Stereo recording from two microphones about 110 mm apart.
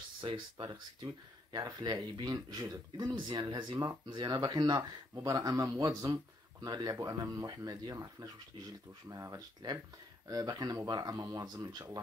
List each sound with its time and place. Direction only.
0.2 s speech: 50° right (ahead or behind)
1.7 s speech: 35° right (ahead or behind)